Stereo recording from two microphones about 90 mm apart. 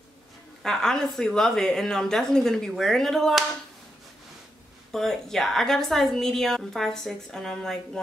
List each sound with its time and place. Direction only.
0.6 s a woman's voice: 5° left (ahead or behind)
4.9 s a woman's voice: 5° left (ahead or behind)